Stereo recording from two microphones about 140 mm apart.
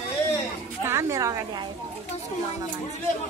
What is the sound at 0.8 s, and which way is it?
Speech, 20° right (ahead or behind).